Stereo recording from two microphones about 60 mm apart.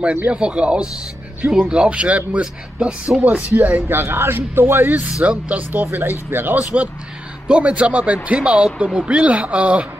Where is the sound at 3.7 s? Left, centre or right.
Right.